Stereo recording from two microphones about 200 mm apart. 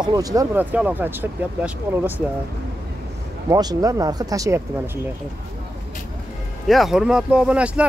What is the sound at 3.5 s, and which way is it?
Speech, 20° right (ahead or behind).